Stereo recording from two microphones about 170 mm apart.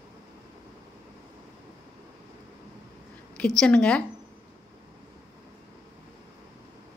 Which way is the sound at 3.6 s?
5° left (ahead or behind).